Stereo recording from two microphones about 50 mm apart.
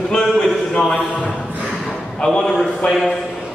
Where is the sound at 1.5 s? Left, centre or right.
Right.